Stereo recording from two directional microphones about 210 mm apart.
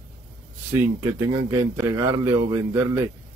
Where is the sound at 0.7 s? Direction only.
15° right (ahead or behind).